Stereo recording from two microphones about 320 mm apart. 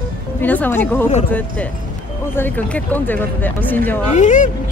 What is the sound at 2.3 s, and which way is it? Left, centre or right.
Speech, centre.